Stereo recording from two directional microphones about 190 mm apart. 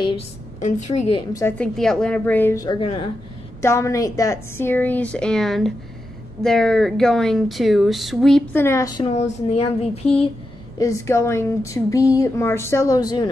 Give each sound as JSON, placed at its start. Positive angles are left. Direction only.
{"t": 0.6, "sound": "speech", "side_deg": 40}
{"t": 1.1, "sound": "a woman's voice", "side_deg": 20}
{"t": 1.6, "sound": "a woman's voice", "side_deg": 5}
{"t": 3.6, "sound": "a woman's voice", "side_deg": 15}
{"t": 8.6, "sound": "a woman's voice", "side_deg": 15}
{"t": 9.0, "sound": "speech", "side_deg": 35}
{"t": 10.0, "sound": "a woman's voice", "side_deg": 5}